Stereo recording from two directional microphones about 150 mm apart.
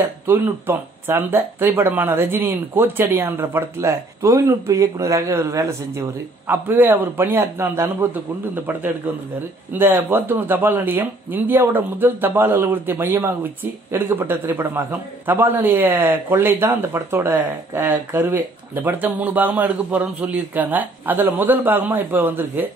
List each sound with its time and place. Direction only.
0.3 s a man's voice: 15° right (ahead or behind)